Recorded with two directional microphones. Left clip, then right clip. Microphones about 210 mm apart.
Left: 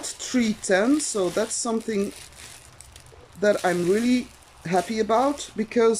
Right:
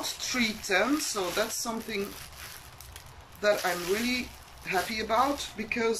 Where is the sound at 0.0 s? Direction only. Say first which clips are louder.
Left 3 dB; 35° left (ahead or behind).